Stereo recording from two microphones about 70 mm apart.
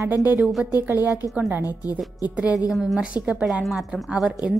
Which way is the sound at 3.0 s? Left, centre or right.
Centre.